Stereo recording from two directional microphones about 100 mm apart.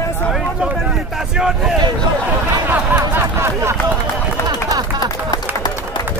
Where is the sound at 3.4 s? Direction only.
30° right (ahead or behind).